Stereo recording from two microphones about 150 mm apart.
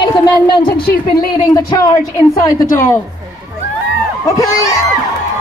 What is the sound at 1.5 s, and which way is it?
A woman's voice, 20° left (ahead or behind).